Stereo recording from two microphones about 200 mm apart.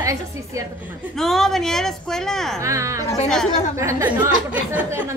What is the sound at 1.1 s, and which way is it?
A woman's voice, centre (ahead or behind).